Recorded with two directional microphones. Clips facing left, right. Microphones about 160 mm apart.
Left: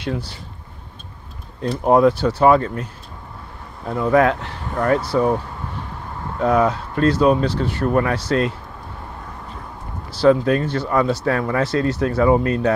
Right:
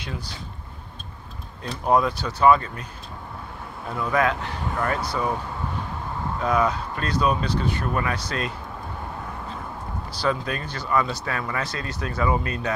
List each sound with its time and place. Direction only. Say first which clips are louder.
0.0 s speech: left 9 dB; 70° left (ahead or behind)
1.9 s speech: left 7 dB; 70° left (ahead or behind)
2.4 s speech: left 3 dB; 60° left (ahead or behind)
3.9 s speech: left 7 dB; 60° left (ahead or behind)
6.4 s speech: left 6 dB; 65° left (ahead or behind)
10.1 s speech: left 11 dB; 65° left (ahead or behind)
11.6 s speech: left 12 dB; 75° left (ahead or behind)